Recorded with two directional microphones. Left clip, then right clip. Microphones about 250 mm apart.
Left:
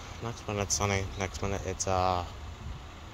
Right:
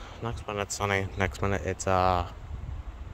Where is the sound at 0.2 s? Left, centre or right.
Right.